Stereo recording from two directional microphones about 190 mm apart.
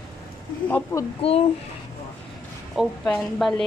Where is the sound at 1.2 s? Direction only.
30° left (ahead or behind).